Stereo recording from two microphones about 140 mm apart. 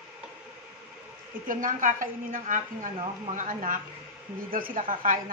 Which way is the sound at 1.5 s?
70° right (ahead or behind).